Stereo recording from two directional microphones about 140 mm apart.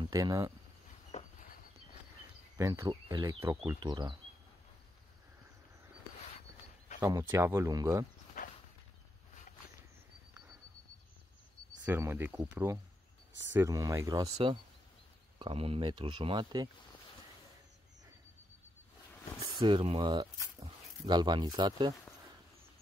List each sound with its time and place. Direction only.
0.0 s speech: 25° right (ahead or behind)
1.1 s a sound: 55° left (ahead or behind)
2.5 s speech: 20° right (ahead or behind)
3.3 s speech: 20° right (ahead or behind)
3.8 s speech: 30° right (ahead or behind)
7.0 s speech: 20° right (ahead or behind)
11.8 s speech: 15° right (ahead or behind); by 16.6 s 35° right (ahead or behind)
19.4 s speech: 35° right (ahead or behind)